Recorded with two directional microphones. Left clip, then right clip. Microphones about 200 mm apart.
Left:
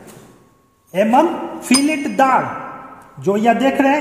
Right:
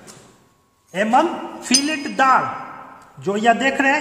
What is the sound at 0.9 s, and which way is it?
A man's voice, 5° left (ahead or behind).